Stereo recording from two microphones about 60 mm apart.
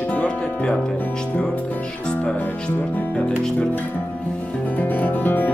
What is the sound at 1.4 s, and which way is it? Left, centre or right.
Speech, left.